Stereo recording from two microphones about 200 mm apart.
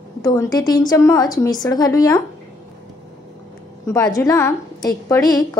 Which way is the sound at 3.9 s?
15° left (ahead or behind).